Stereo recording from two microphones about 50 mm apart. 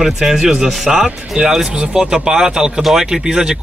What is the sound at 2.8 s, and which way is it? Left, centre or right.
Speech, centre.